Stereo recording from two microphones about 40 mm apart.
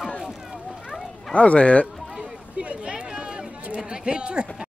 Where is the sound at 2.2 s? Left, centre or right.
Right.